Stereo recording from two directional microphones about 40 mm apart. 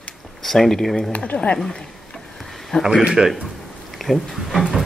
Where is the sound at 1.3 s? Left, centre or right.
Left.